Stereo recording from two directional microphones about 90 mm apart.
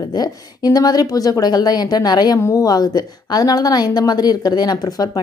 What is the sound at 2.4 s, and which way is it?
A woman's voice, 35° left (ahead or behind).